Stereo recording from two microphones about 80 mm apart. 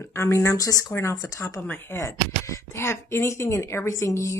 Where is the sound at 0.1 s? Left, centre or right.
Left.